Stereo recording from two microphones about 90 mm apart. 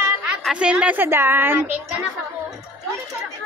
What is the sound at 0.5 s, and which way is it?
A woman's voice, 10° right (ahead or behind).